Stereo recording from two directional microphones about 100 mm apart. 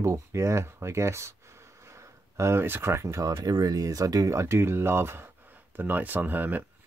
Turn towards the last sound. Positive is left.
turn(degrees=-20)  # may be behind; listen again after turning